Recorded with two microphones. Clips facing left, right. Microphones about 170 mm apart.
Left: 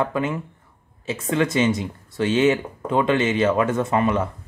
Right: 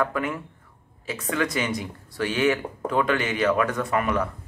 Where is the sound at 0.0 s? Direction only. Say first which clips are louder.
Left 3 dB; 25° left (ahead or behind).